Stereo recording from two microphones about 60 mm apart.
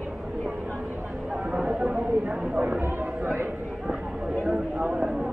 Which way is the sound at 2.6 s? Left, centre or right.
Right.